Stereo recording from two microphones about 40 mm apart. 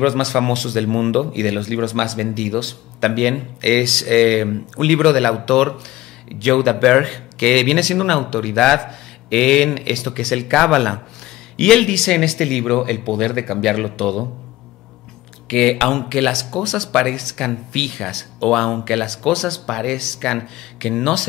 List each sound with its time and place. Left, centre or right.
0.0 s speech: centre
12.0 s speech: centre
15.4 s speech: centre